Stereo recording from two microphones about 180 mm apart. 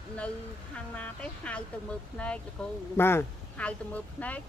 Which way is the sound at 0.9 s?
5° left (ahead or behind).